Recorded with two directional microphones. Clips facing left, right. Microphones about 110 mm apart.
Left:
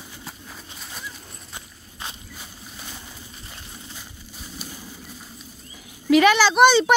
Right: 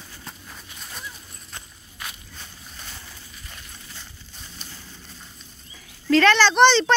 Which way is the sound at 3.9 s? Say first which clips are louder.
Left 3 dB; 10° left (ahead or behind).